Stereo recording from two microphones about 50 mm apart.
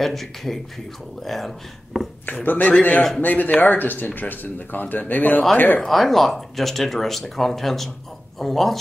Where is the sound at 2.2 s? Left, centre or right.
Left.